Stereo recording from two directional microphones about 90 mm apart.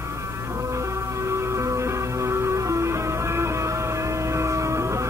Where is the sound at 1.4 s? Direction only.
35° right (ahead or behind).